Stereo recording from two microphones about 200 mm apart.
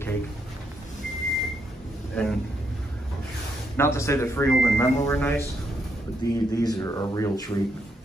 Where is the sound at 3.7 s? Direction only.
15° left (ahead or behind).